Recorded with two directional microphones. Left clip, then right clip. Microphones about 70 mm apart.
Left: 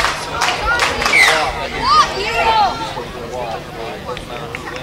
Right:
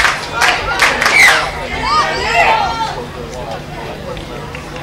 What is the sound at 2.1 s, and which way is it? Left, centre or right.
Chatter, right.